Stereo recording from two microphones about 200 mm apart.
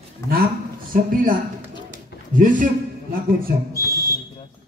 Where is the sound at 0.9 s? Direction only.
45° right (ahead or behind).